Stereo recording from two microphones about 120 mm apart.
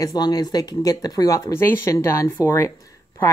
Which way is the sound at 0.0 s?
35° left (ahead or behind).